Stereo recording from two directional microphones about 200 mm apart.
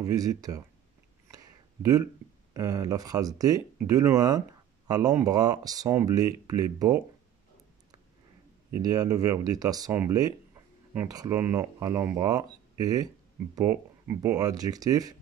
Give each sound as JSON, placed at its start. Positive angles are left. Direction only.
{"t": 0.0, "sound": "speech", "side_deg": -20}
{"t": 1.3, "sound": "a sound", "side_deg": -20}
{"t": 2.5, "sound": "speech", "side_deg": -15}
{"t": 8.8, "sound": "speech", "side_deg": -20}